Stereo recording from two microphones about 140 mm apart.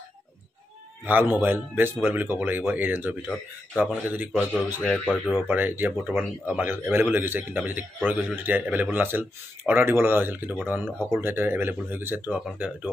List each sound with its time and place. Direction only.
1.0 s a man's voice: 10° right (ahead or behind)
4.3 s a man's voice: 10° left (ahead or behind)
4.6 s a man's voice: 15° right (ahead or behind)
4.9 s speech: 5° left (ahead or behind)
5.3 s a man's voice: 15° right (ahead or behind)